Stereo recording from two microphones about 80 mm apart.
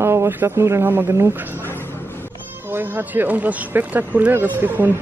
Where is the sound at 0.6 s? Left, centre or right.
Right.